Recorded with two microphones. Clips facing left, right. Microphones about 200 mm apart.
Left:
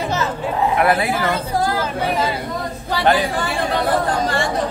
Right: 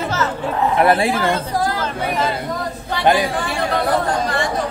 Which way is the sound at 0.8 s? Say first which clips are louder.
Right 2 dB; 30° right (ahead or behind).